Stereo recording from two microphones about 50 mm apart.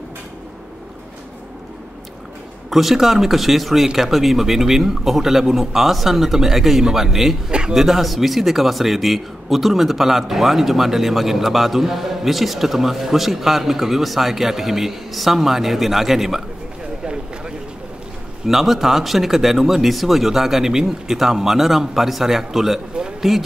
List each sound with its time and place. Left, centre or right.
2.7 s a man's voice: centre
17.0 s a sound: centre
18.5 s a man's voice: centre